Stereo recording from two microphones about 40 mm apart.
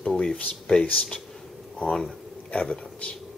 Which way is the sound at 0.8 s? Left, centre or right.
Left.